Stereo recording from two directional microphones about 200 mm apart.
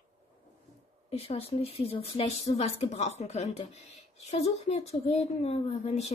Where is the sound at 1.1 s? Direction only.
30° left (ahead or behind).